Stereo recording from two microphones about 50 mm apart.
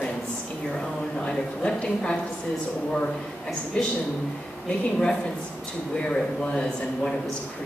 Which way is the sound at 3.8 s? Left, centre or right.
Left.